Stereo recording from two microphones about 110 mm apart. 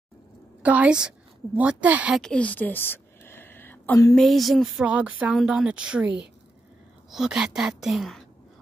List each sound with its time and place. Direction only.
0.6 s a woman's voice: 15° right (ahead or behind)
2.1 s a sound: 10° left (ahead or behind)
4.1 s a woman's voice: centre (ahead or behind)
4.8 s speech: 10° right (ahead or behind)
7.1 s a woman's voice: 5° right (ahead or behind)